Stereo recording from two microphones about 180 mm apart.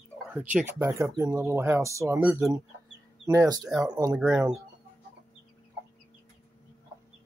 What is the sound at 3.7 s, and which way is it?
Speech, 5° right (ahead or behind).